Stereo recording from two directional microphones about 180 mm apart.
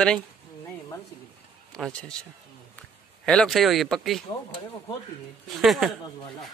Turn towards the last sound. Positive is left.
turn(degrees=0)  # may be behind; listen again after turning